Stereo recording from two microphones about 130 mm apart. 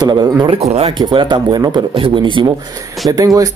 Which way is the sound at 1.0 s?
35° right (ahead or behind).